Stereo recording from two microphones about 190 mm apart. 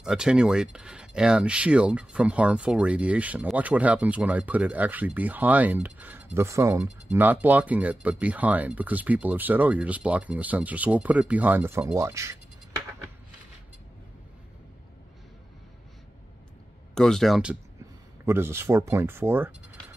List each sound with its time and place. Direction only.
0.0 s speech: 5° right (ahead or behind)
16.9 s speech: 5° left (ahead or behind)